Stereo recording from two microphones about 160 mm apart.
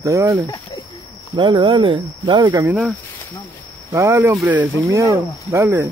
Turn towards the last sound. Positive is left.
turn(degrees=-20)  # may be behind; listen again after turning